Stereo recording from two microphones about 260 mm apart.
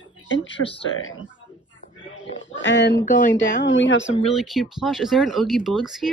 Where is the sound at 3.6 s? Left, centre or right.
Left.